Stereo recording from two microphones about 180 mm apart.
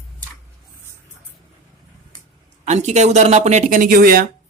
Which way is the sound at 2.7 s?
40° right (ahead or behind).